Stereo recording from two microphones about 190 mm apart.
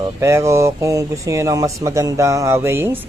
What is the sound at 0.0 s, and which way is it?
Speech, 15° right (ahead or behind).